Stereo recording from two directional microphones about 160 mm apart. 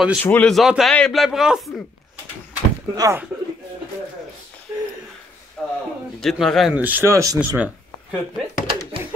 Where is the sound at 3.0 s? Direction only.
15° right (ahead or behind).